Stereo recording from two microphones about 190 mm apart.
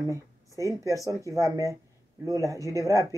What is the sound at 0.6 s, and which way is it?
Speech, 15° right (ahead or behind).